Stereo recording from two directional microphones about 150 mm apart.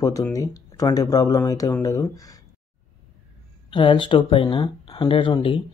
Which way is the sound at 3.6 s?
35° left (ahead or behind).